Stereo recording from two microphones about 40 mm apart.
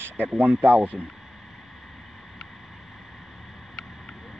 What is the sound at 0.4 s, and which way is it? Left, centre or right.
Speech, right.